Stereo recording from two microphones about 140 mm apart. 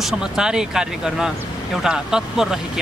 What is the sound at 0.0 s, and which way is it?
Speech, 5° right (ahead or behind).